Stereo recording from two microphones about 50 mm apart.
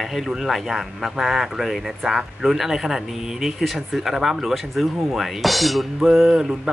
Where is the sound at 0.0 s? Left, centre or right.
Centre.